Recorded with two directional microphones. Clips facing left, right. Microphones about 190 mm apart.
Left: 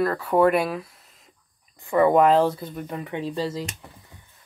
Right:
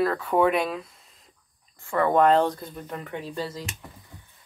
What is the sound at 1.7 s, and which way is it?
Speech, 15° left (ahead or behind).